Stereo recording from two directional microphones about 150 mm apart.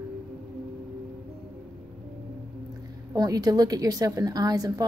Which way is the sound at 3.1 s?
25° right (ahead or behind).